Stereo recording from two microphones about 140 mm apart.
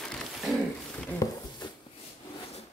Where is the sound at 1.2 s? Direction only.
25° left (ahead or behind).